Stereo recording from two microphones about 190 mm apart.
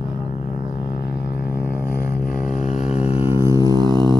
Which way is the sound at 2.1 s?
45° left (ahead or behind).